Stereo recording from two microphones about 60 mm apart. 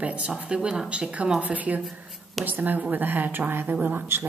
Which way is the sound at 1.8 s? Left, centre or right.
Centre.